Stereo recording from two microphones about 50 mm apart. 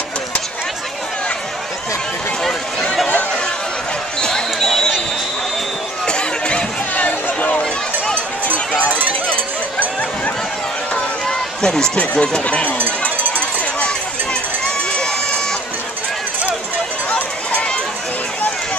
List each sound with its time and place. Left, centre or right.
2.4 s run: centre
4.2 s basketball bounce: centre
6.0 s music: centre
7.0 s run: left
8.8 s run: right
9.3 s a sound: left
11.2 s run: centre
12.0 s speech: left
13.0 s run: left
17.1 s a sound: left